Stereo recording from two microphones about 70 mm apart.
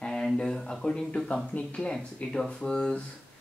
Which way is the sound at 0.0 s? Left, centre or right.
Centre.